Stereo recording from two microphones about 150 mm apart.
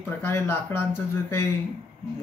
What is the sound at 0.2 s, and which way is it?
Speech, 15° left (ahead or behind).